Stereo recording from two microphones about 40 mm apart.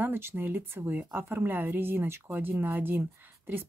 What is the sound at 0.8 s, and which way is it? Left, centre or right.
A woman's voice, right.